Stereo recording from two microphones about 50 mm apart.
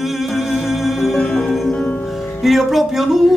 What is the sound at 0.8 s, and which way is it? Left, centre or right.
Music, centre.